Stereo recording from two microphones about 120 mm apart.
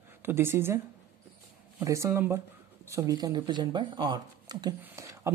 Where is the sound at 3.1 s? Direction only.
35° right (ahead or behind).